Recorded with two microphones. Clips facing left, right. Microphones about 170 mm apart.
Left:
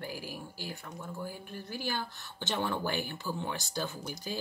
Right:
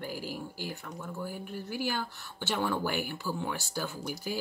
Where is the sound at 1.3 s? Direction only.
15° right (ahead or behind).